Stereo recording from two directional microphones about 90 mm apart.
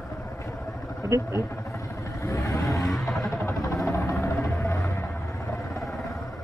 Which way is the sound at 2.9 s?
Centre (ahead or behind).